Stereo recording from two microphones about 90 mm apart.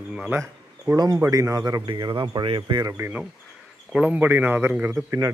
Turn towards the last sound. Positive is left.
turn(degrees=-35)  # may be behind; listen again after turning